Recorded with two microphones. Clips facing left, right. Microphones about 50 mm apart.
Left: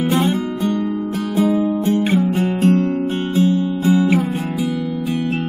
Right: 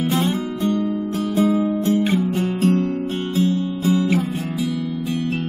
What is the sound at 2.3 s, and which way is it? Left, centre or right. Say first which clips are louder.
Music: left 3 dB; centre.